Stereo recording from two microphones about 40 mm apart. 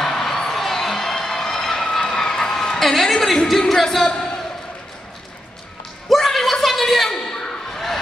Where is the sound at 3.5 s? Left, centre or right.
Centre.